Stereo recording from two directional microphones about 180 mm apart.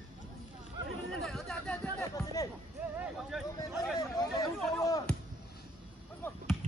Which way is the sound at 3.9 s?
20° left (ahead or behind).